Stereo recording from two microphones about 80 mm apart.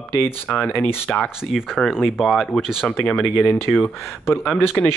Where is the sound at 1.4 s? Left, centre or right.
Centre.